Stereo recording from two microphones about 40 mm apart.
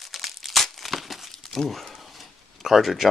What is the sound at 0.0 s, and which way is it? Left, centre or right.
Crumpling, centre.